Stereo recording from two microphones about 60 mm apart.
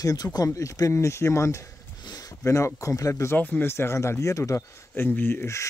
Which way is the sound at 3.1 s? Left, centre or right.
Left.